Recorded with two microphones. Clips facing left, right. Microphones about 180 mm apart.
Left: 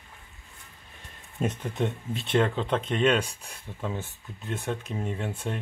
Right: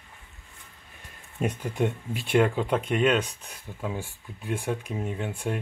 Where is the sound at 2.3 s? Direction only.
10° right (ahead or behind).